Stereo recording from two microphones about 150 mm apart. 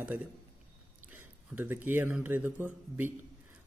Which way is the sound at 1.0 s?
10° right (ahead or behind).